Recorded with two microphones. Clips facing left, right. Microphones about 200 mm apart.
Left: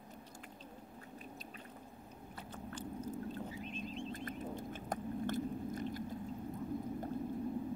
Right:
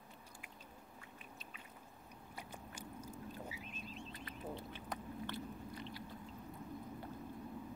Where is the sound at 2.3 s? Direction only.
10° right (ahead or behind).